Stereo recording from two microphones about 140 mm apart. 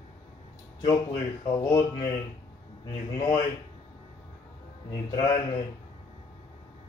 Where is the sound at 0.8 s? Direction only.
25° left (ahead or behind).